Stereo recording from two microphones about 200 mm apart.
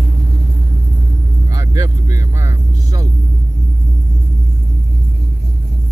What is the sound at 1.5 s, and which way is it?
Vehicle, 15° right (ahead or behind).